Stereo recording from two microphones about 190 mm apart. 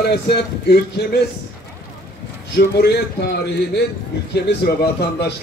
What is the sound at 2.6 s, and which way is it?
Speech, 55° left (ahead or behind).